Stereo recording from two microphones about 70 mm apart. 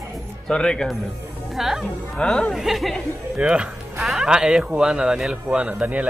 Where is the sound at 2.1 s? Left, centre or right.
Centre.